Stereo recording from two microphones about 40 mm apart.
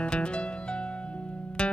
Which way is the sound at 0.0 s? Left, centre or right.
Left.